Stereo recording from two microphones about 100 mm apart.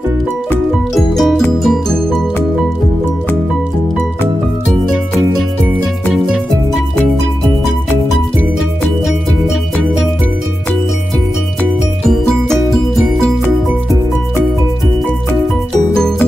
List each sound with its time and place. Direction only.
0.9 s music: centre (ahead or behind)